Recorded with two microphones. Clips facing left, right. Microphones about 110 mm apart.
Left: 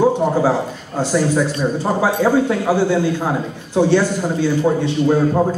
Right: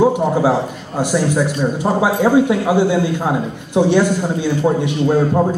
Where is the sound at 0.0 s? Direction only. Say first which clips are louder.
Right 1 dB; 15° right (ahead or behind).